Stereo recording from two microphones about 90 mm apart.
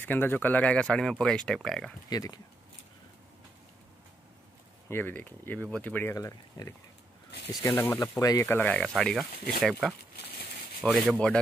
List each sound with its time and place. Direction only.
0.0 s speech: 20° left (ahead or behind); by 2.0 s 5° left (ahead or behind)
2.0 s speech: 45° left (ahead or behind)
4.8 s speech: 25° left (ahead or behind)
6.1 s speech: 35° left (ahead or behind)
7.8 s speech: 15° left (ahead or behind)
8.2 s speech: 40° left (ahead or behind)
8.5 s speech: 20° left (ahead or behind)
8.9 s speech: centre (ahead or behind)